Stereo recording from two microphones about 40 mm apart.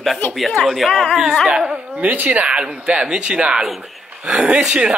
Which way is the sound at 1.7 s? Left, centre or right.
Right.